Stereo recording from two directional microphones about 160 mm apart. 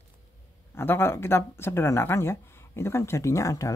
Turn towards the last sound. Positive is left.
turn(degrees=20)  # may be behind; listen again after turning